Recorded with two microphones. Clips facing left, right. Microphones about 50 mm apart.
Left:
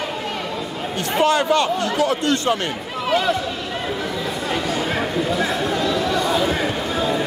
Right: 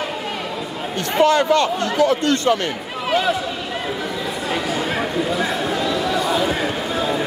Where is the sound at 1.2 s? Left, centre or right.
Left.